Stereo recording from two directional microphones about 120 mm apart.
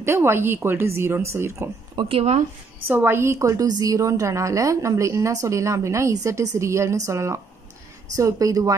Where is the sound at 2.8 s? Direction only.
15° right (ahead or behind).